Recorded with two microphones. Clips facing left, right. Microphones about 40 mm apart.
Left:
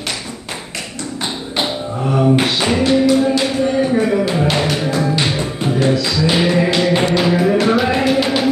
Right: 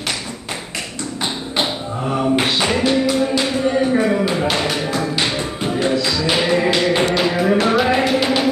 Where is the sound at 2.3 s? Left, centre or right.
Centre.